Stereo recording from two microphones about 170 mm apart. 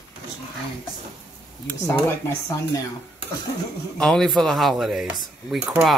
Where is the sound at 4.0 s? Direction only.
Centre (ahead or behind).